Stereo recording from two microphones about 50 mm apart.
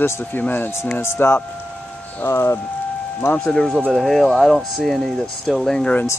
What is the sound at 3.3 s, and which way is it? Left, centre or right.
Speech, centre.